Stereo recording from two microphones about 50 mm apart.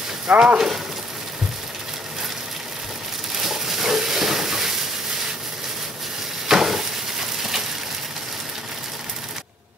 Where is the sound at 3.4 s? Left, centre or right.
Centre.